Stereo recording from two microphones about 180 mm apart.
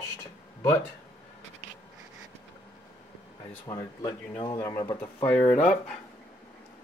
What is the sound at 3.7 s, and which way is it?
Speech, 15° left (ahead or behind).